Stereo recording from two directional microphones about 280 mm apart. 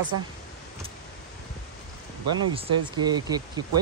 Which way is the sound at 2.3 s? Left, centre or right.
Centre.